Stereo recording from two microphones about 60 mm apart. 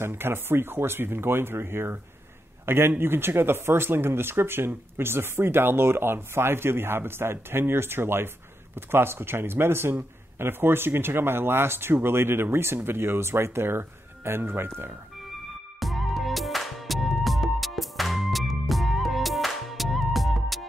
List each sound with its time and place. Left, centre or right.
0.0 s a man's voice: right
15.8 s music: centre